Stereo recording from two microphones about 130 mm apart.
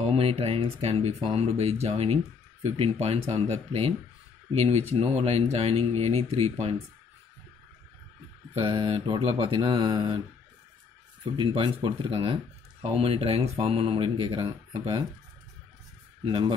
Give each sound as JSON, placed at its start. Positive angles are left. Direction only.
{"t": 0.0, "sound": "speech", "side_deg": -50}
{"t": 8.6, "sound": "mantra", "side_deg": -40}
{"t": 11.2, "sound": "mantra", "side_deg": -40}
{"t": 12.8, "sound": "speech", "side_deg": -50}
{"t": 16.3, "sound": "mantra", "side_deg": -35}